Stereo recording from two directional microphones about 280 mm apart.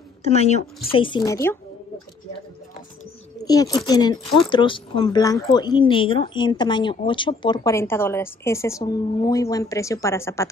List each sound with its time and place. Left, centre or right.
0.2 s a woman's voice: left
3.4 s speech: centre